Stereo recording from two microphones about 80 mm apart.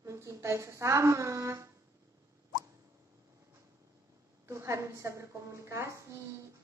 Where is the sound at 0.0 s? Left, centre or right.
Right.